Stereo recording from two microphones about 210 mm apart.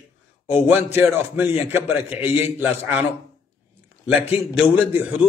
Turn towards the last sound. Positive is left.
turn(degrees=-5)  # may be behind; listen again after turning